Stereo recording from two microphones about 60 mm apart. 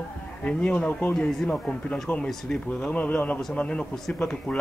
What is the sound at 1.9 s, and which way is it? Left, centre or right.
Speech, left.